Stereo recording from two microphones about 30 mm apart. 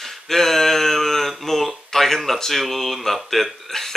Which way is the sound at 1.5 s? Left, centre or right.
Centre.